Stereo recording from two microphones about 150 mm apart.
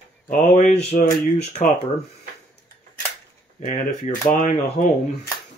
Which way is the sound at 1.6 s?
60° left (ahead or behind).